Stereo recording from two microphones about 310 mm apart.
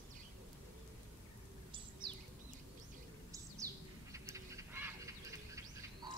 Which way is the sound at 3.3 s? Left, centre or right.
Centre.